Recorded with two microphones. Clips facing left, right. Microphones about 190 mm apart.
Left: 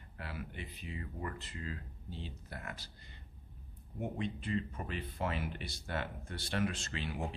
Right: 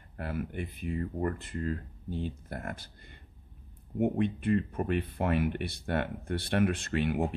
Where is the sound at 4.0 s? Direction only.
60° right (ahead or behind).